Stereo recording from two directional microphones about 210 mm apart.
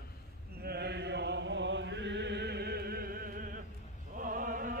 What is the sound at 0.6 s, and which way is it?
Chant, 50° right (ahead or behind).